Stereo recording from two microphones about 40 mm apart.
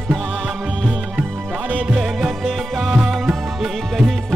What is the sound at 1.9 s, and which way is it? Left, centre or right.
Music, centre.